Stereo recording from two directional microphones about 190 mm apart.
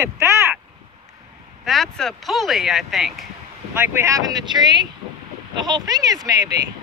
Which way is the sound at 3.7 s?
15° right (ahead or behind).